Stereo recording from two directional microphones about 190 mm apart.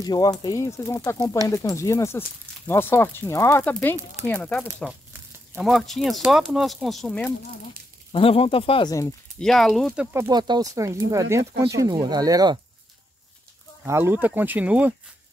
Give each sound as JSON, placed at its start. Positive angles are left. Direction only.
{"t": 0.0, "sound": "speech", "side_deg": 20}
{"t": 8.1, "sound": "speech", "side_deg": 30}
{"t": 9.4, "sound": "speech", "side_deg": 0}
{"t": 10.1, "sound": "speech", "side_deg": -20}
{"t": 13.8, "sound": "speech", "side_deg": -15}